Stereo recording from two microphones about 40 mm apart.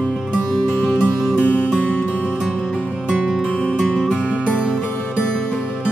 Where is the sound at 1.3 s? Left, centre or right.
Left.